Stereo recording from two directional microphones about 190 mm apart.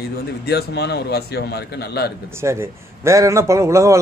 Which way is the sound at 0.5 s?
60° left (ahead or behind).